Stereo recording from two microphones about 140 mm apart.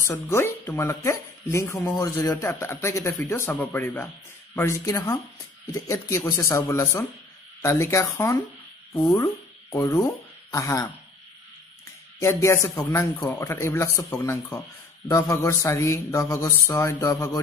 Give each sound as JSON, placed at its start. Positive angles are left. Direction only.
{"t": 0.0, "sound": "speech", "side_deg": 20}
{"t": 12.2, "sound": "speech", "side_deg": 20}